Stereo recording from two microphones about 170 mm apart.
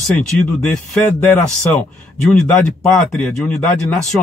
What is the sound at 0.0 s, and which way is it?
Speech, 5° left (ahead or behind).